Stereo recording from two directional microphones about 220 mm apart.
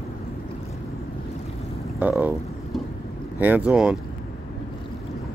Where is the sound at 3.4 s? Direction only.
5° right (ahead or behind).